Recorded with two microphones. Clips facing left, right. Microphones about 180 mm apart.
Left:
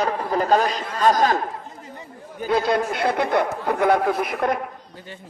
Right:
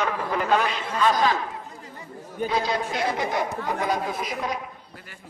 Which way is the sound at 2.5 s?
55° left (ahead or behind).